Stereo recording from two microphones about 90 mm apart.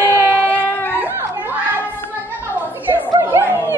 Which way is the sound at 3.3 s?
25° right (ahead or behind).